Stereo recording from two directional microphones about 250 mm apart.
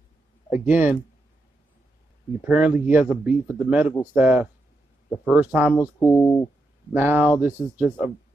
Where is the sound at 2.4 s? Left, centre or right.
Centre.